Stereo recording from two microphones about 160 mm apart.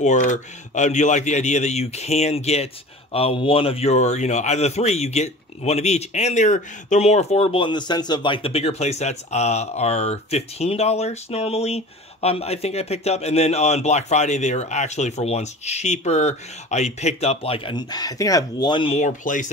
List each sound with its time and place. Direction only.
0.0 s speech: 50° left (ahead or behind); by 19.0 s 35° left (ahead or behind)
19.0 s speech: 55° left (ahead or behind)